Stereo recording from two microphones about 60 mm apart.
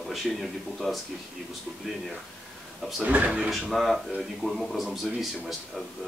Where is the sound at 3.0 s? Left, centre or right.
Right.